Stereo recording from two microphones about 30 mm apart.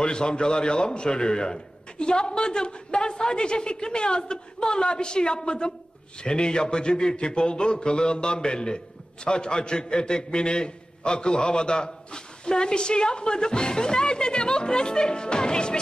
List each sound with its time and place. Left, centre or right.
0.0 s speech: left